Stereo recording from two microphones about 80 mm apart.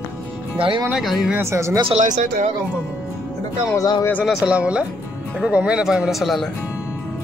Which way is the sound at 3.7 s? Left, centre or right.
Left.